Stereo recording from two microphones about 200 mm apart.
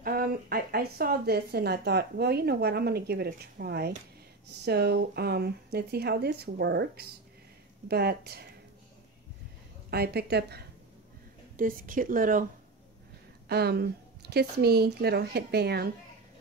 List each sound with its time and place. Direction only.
0.0 s a woman's voice: 45° right (ahead or behind)
9.8 s a woman's voice: 50° right (ahead or behind)
13.5 s a woman's voice: 55° right (ahead or behind)